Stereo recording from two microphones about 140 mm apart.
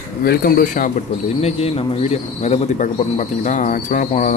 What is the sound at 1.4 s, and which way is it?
Speech, 45° left (ahead or behind).